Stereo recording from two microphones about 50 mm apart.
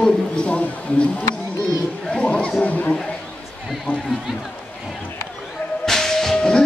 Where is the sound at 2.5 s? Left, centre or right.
Left.